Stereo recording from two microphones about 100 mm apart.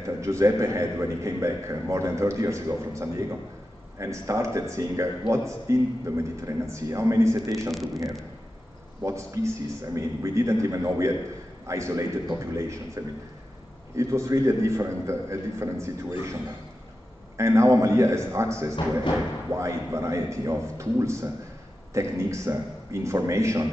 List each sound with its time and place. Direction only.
0.0 s a man's voice: 30° right (ahead or behind)
7.7 s a man's voice: centre (ahead or behind)
9.0 s a man's voice: 30° right (ahead or behind)
17.4 s a man's voice: 30° right (ahead or behind)